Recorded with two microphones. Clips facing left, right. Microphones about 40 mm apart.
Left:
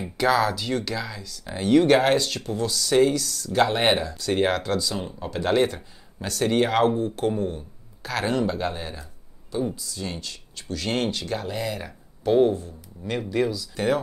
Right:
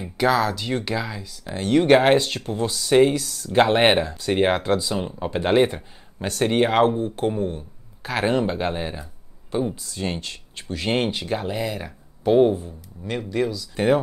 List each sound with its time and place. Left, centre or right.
0.2 s speech: centre
0.7 s speech: centre
1.4 s speech: centre
1.8 s speech: centre
4.1 s speech: centre
9.8 s speech: right
10.7 s speech: right
13.0 s speech: centre